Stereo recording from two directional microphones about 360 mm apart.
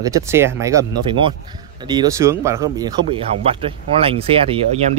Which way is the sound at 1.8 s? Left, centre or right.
Centre.